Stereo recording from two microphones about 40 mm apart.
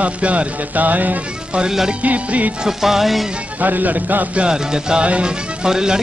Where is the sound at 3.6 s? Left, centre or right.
Right.